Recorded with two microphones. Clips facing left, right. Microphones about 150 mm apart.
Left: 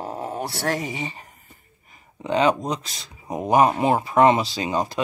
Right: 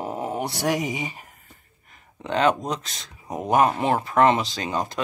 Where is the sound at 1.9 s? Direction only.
5° left (ahead or behind).